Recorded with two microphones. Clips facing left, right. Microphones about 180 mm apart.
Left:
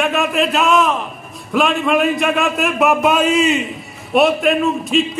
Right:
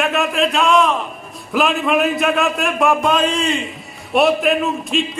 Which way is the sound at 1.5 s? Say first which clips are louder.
Left 1 dB; centre (ahead or behind).